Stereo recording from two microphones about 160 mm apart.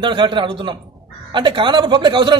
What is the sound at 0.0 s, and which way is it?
A man's voice, 30° right (ahead or behind).